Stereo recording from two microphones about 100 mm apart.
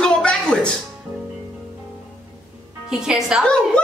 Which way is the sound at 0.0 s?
10° left (ahead or behind).